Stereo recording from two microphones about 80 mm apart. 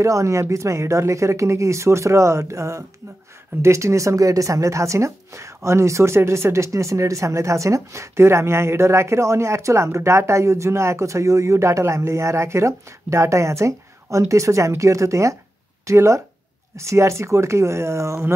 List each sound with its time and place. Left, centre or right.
0.0 s a woman's voice: right